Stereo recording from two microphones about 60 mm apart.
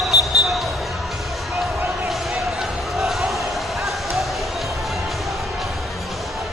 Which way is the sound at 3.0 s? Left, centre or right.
Centre.